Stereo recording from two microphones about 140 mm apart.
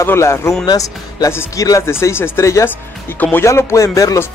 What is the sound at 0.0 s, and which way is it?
Speech, 20° left (ahead or behind).